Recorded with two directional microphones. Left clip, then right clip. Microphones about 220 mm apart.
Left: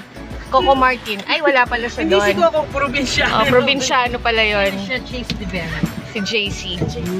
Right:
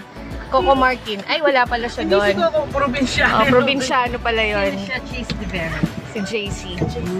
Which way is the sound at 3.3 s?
Centre (ahead or behind).